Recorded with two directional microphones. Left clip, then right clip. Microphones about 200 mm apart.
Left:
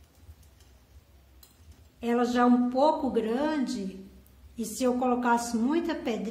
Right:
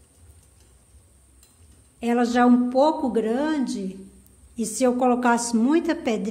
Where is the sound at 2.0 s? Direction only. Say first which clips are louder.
Right 5 dB; 40° right (ahead or behind).